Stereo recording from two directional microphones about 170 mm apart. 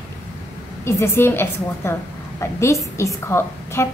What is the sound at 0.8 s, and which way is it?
A woman's voice, 15° left (ahead or behind).